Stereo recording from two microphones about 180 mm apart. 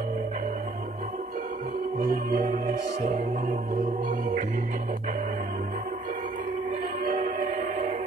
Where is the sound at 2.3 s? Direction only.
40° right (ahead or behind).